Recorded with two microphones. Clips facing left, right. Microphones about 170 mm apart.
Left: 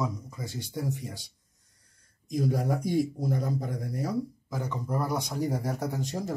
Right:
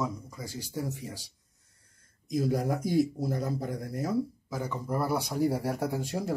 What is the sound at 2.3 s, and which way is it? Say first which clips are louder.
A man's voice: even; 5° right (ahead or behind).